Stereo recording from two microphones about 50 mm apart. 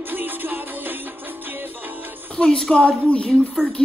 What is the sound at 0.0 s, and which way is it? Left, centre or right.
Music, right.